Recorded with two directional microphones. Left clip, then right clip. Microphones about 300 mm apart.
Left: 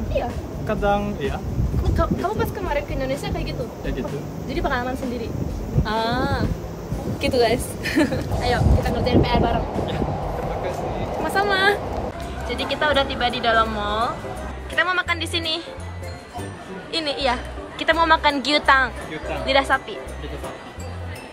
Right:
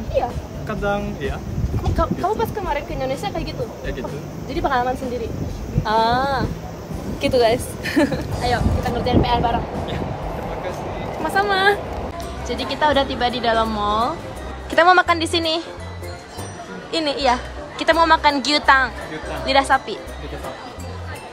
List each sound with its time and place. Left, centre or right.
0.7 s speech: centre
2.0 s a woman's voice: centre
4.5 s a woman's voice: centre
11.2 s speech: centre
12.4 s a woman's voice: centre
16.9 s a woman's voice: centre